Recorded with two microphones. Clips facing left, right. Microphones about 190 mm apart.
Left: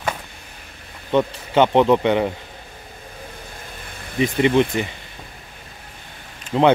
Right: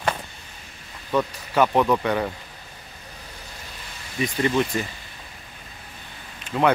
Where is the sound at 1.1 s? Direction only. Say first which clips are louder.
Left 5 dB; 25° left (ahead or behind).